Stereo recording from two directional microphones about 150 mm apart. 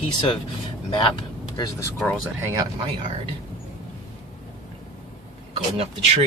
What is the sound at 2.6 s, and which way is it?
Speech, 35° right (ahead or behind).